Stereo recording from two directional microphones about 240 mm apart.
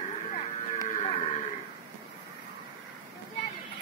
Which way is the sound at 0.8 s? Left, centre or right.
Left.